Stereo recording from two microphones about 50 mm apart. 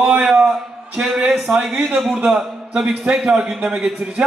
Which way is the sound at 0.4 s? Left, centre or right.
Right.